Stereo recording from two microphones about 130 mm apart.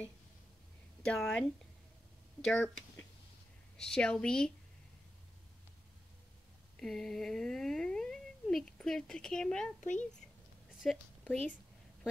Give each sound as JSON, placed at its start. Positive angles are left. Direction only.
{"t": 1.0, "sound": "a woman's voice", "side_deg": 5}
{"t": 2.4, "sound": "a woman's voice", "side_deg": 5}
{"t": 6.8, "sound": "speech", "side_deg": 5}
{"t": 9.8, "sound": "speech", "side_deg": 65}
{"t": 10.8, "sound": "a woman's voice", "side_deg": 5}